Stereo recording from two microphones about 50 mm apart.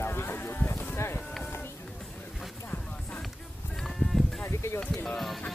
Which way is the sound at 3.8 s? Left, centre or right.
Centre.